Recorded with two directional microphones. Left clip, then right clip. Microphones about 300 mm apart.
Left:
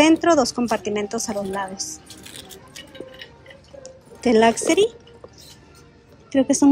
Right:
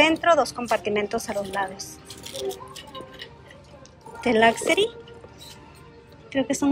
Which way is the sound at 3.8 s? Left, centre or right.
Centre.